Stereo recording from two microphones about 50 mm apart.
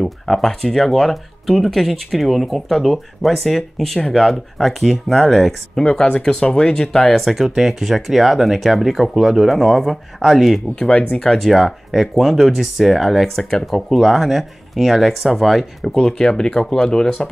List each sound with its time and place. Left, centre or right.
0.0 s speech: centre
5.9 s speech: left; by 10.9 s centre
10.9 s speech: left
11.1 s speech: centre
13.5 s speech: centre
13.8 s speech: centre